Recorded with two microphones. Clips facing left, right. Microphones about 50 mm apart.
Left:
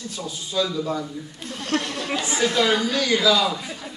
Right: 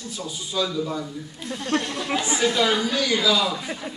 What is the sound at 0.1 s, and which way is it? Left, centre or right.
Speech, centre.